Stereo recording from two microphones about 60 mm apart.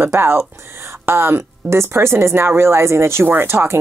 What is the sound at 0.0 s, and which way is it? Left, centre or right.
Speech, right.